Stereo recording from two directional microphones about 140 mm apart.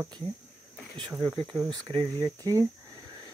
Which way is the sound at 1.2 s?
5° left (ahead or behind).